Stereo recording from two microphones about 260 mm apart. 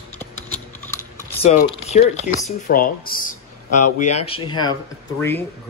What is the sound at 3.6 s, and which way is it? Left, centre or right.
Speech, left.